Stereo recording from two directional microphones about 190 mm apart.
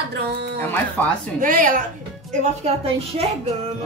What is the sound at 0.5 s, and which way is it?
Speech, 10° left (ahead or behind).